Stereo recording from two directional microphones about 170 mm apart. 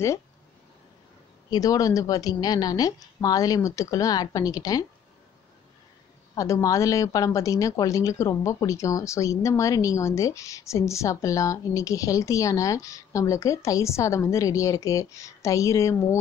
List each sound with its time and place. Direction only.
1.5 s speech: 20° left (ahead or behind)
6.3 s speech: 20° left (ahead or behind)